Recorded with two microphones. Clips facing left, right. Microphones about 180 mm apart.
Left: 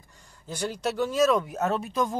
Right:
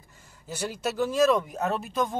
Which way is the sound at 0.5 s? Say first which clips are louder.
Left 1 dB; 5° right (ahead or behind).